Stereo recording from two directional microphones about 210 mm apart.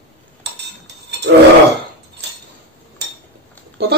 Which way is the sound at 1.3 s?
50° right (ahead or behind).